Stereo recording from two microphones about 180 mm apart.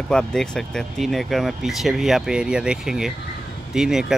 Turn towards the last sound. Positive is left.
turn(degrees=-5)  # may be behind; listen again after turning